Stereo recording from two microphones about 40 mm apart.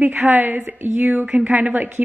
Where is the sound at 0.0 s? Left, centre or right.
Right.